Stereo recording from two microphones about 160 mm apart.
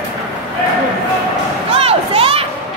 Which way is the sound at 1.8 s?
35° right (ahead or behind).